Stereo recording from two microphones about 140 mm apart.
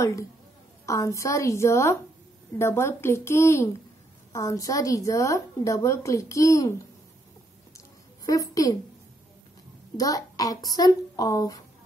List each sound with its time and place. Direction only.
0.0 s a woman's voice: 20° left (ahead or behind)
8.3 s a woman's voice: 25° left (ahead or behind)
9.9 s a woman's voice: 25° left (ahead or behind)